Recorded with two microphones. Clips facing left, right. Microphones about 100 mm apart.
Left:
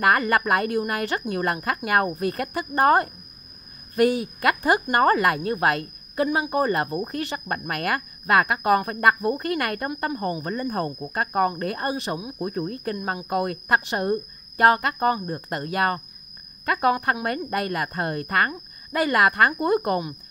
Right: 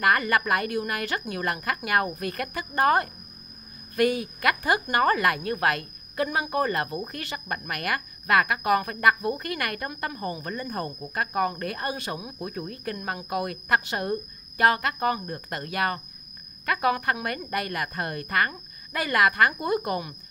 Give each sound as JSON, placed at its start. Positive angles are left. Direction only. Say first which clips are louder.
{"t": 0.0, "sound": "a woman's voice", "louder": "left 3 dB", "side_deg": 35}